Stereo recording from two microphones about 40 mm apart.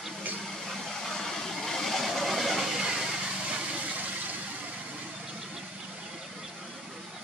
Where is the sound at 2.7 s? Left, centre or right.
Centre.